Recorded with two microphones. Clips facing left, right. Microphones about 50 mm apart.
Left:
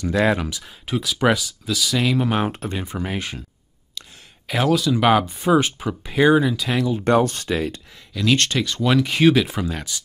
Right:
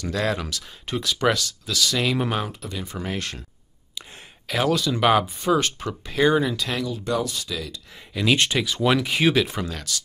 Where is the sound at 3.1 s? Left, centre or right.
Centre.